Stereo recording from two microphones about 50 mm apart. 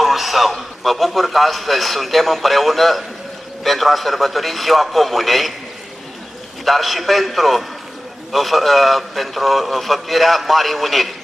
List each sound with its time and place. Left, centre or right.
0.0 s a man's voice: centre
6.6 s a man's voice: centre